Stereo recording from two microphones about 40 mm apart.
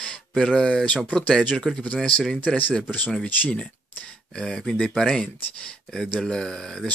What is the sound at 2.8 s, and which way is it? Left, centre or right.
Speech, left.